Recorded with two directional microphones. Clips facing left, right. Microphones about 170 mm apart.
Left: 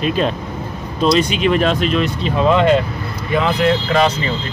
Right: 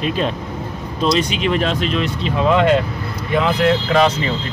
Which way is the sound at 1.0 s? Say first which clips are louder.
Left 3 dB; 50° left (ahead or behind).